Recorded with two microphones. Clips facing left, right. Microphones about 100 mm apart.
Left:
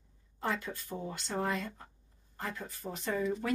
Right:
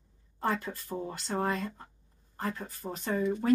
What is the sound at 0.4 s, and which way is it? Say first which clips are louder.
Speech: right 4 dB; 40° right (ahead or behind).